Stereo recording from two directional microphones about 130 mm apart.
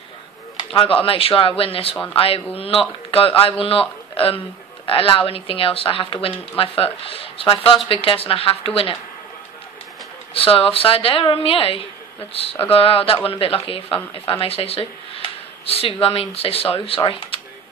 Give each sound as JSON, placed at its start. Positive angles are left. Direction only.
{"t": 0.6, "sound": "speech", "side_deg": 40}
{"t": 4.8, "sound": "speech", "side_deg": 45}
{"t": 10.3, "sound": "speech", "side_deg": 45}